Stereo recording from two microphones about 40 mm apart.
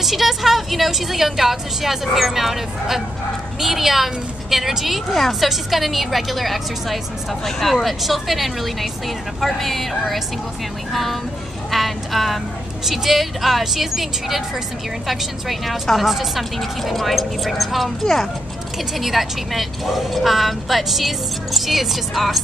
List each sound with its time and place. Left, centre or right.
0.0 s a woman's voice: centre
10.9 s a woman's voice: centre